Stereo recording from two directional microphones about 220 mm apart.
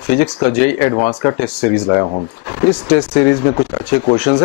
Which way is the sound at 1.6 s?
10° left (ahead or behind).